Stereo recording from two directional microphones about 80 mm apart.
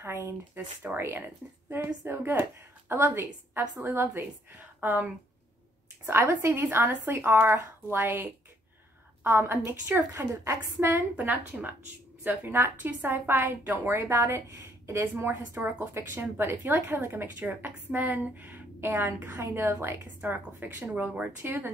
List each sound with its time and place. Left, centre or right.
0.0 s a sound: right
0.9 s a woman's voice: right
12.3 s a woman's voice: right
18.9 s a woman's voice: right